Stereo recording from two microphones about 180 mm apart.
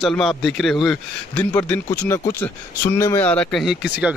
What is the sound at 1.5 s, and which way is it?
Speech, 15° left (ahead or behind).